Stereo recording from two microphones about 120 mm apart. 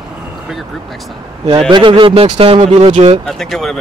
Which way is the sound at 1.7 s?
45° right (ahead or behind).